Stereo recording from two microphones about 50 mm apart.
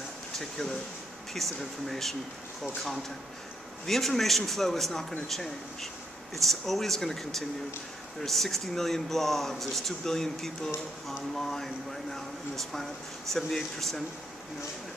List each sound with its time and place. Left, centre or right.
0.4 s speech: centre
3.8 s speech: centre